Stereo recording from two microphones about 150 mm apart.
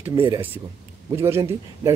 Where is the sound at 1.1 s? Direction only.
15° right (ahead or behind).